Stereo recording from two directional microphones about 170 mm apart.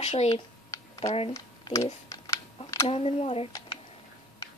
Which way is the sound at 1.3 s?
20° left (ahead or behind).